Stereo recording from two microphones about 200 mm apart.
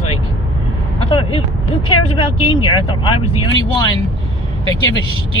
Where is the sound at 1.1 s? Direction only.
25° left (ahead or behind).